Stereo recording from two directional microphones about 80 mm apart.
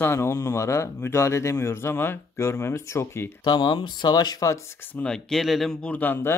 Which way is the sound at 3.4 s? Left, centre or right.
Left.